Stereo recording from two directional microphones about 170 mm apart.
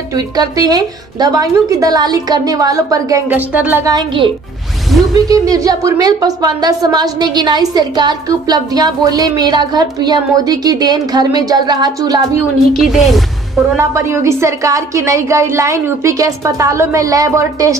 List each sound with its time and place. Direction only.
0.1 s a woman's voice: 20° right (ahead or behind)
3.8 s a woman's voice: 25° right (ahead or behind)
4.9 s speech: centre (ahead or behind)
5.3 s a woman's voice: 20° right (ahead or behind)
12.7 s a woman's voice: centre (ahead or behind)
13.7 s a woman's voice: 15° right (ahead or behind)